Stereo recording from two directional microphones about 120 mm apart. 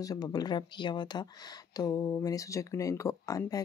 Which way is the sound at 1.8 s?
30° left (ahead or behind).